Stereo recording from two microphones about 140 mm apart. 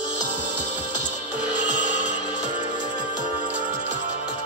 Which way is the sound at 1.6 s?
65° right (ahead or behind).